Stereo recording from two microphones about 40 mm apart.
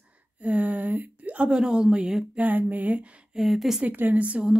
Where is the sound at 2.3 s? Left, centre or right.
Right.